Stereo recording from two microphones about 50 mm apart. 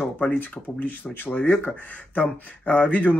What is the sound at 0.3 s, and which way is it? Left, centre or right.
Speech, left.